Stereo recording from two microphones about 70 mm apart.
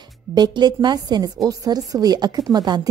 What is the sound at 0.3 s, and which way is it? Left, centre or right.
A woman's voice, right.